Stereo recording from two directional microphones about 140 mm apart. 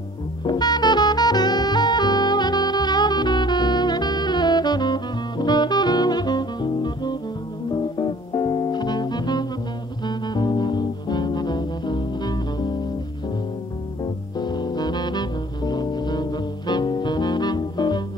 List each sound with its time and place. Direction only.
0.5 s music: 30° left (ahead or behind)
14.4 s music: 30° left (ahead or behind)